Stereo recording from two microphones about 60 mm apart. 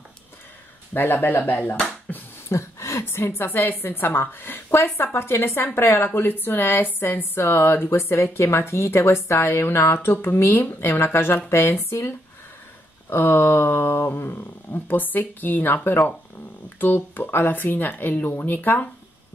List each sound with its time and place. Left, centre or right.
0.9 s speech: left
2.5 s speech: left
13.1 s speech: left